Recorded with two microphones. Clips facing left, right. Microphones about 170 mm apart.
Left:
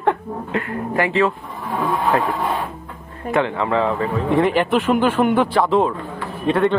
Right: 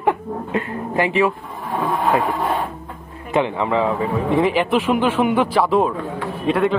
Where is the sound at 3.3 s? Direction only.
15° right (ahead or behind).